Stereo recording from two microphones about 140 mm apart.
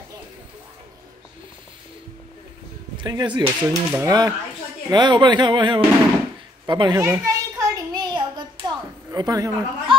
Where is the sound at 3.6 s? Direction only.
20° right (ahead or behind).